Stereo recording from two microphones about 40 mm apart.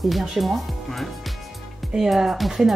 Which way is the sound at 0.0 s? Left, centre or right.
Centre.